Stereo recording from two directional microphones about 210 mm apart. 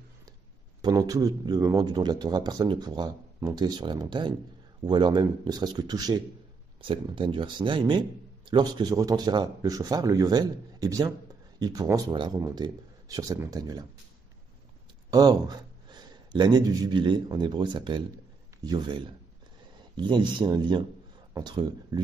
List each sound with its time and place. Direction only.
0.8 s speech: 15° right (ahead or behind)
15.0 s speech: 20° right (ahead or behind)